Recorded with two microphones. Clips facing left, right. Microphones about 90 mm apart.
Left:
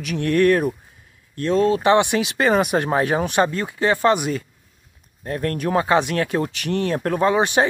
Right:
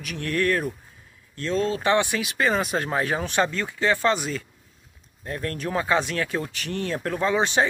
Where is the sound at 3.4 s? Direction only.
40° left (ahead or behind).